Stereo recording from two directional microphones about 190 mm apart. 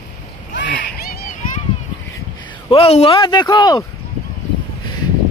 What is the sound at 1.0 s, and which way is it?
Children playing, 50° left (ahead or behind).